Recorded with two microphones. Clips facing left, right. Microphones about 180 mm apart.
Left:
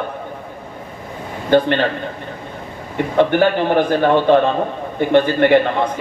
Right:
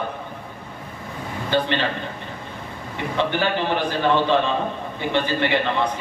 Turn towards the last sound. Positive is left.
turn(degrees=50)  # may be behind; listen again after turning